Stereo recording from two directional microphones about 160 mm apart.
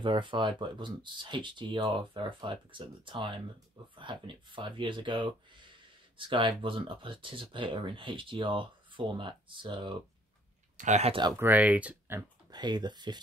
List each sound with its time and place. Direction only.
0.0 s speech: 30° right (ahead or behind)
10.8 s speech: 45° right (ahead or behind)
11.3 s speech: 10° right (ahead or behind)
12.4 s speech: 25° right (ahead or behind)